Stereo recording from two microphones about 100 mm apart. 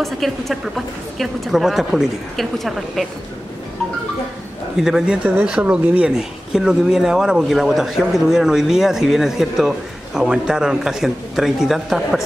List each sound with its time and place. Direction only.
0.0 s speech: centre (ahead or behind)
4.7 s speech: 5° right (ahead or behind)